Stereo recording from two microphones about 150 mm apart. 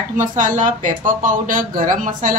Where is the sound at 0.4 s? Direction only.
60° right (ahead or behind).